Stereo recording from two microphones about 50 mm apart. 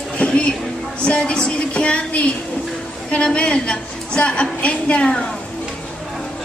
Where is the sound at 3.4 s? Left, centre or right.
Centre.